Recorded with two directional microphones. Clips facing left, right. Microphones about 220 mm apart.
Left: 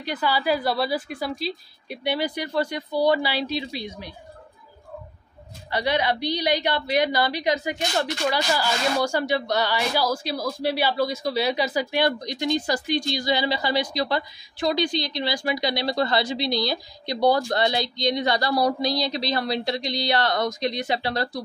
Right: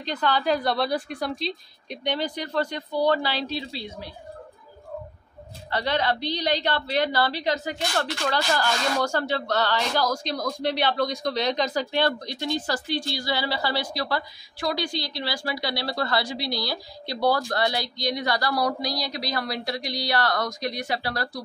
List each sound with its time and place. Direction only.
0.0 s a woman's voice: 10° left (ahead or behind)
5.7 s a woman's voice: 15° left (ahead or behind)